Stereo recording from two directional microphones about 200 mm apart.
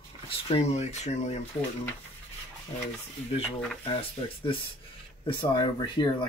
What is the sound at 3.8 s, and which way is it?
Speech, 30° left (ahead or behind).